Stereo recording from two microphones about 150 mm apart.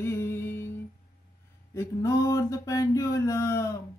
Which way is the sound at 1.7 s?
20° left (ahead or behind).